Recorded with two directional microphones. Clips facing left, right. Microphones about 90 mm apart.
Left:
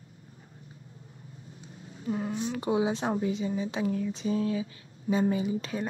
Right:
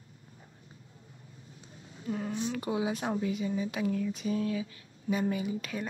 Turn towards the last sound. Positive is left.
turn(degrees=30)  # may be behind; listen again after turning